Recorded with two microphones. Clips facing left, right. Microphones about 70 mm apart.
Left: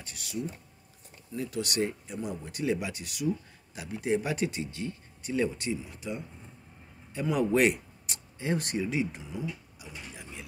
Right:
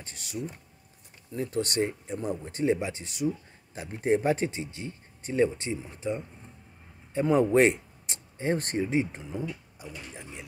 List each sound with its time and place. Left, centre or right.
0.0 s speech: right